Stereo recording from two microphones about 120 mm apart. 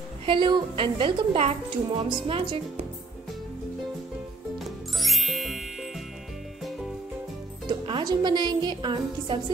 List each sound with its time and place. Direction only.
0.2 s a woman's voice: 45° right (ahead or behind)
5.0 s music: centre (ahead or behind)
7.6 s speech: 40° right (ahead or behind)